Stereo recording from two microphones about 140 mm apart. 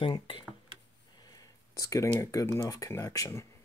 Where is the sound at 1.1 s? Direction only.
25° left (ahead or behind).